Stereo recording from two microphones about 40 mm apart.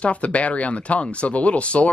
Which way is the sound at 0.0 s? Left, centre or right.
Left.